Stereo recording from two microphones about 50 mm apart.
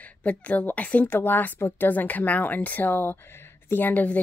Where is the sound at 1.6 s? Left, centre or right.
Left.